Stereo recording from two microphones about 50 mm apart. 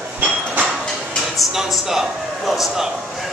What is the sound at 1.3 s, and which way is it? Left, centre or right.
A man's voice, centre.